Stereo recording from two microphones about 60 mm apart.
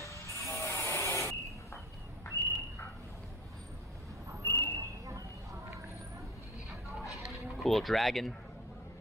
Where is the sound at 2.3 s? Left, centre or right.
Right.